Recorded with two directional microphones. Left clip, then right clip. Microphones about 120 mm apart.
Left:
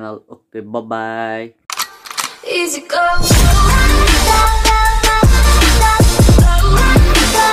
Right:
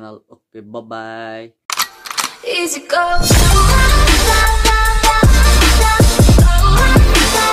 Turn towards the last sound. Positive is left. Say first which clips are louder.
# left 1 dB
turn(degrees=0)  # may be behind; listen again after turning